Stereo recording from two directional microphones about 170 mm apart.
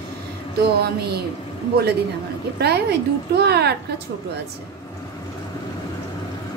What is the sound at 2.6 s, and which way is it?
A woman's voice, 75° right (ahead or behind).